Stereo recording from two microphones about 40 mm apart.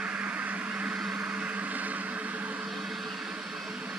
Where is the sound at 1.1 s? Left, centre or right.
Right.